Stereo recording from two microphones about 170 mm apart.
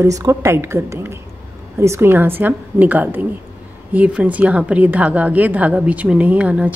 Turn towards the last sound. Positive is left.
turn(degrees=-5)  # may be behind; listen again after turning